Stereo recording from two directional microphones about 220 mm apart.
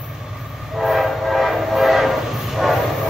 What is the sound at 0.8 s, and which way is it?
Train, centre (ahead or behind).